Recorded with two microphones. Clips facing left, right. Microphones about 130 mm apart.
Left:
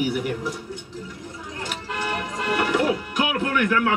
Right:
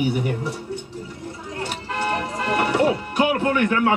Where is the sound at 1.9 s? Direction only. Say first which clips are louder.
Right 3 dB; 35° right (ahead or behind).